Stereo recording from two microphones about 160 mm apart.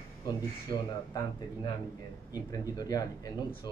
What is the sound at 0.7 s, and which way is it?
Speech, 30° left (ahead or behind).